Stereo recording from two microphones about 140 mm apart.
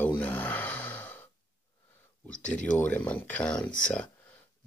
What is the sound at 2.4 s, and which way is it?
Speech, 10° left (ahead or behind).